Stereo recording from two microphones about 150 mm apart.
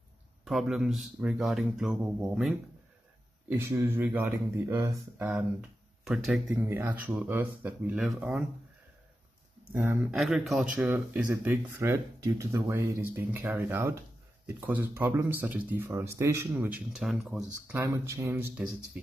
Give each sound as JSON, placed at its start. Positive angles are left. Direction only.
{"t": 0.5, "sound": "speech", "side_deg": 0}
{"t": 3.4, "sound": "speech", "side_deg": -15}
{"t": 5.2, "sound": "speech", "side_deg": -5}
{"t": 6.5, "sound": "speech", "side_deg": -15}
{"t": 10.1, "sound": "speech", "side_deg": 0}
{"t": 11.3, "sound": "speech", "side_deg": -15}
{"t": 17.8, "sound": "speech", "side_deg": -20}